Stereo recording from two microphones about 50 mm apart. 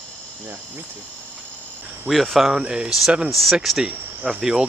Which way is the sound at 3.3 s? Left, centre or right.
Centre.